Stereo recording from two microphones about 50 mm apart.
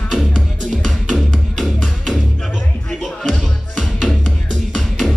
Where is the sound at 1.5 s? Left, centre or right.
Centre.